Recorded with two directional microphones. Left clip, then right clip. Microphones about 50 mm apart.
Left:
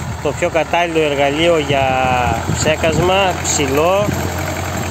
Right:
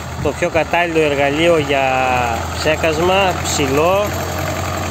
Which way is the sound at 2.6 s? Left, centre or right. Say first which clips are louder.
Even; centre.